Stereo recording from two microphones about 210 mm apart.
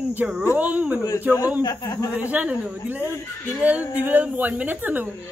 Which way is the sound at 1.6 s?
20° left (ahead or behind).